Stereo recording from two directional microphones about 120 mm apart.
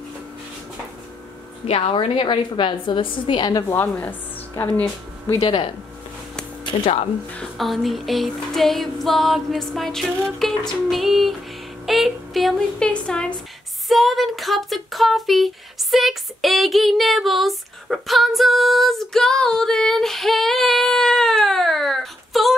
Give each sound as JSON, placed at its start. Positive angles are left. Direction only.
{"t": 1.7, "sound": "a woman's voice", "side_deg": 50}
{"t": 3.7, "sound": "speech", "side_deg": 15}
{"t": 6.6, "sound": "speech", "side_deg": 50}
{"t": 7.5, "sound": "music", "side_deg": 0}
{"t": 11.8, "sound": "speech", "side_deg": 0}